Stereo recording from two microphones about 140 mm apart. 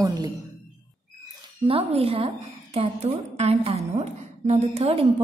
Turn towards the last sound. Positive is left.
turn(degrees=-45)  # may be behind; listen again after turning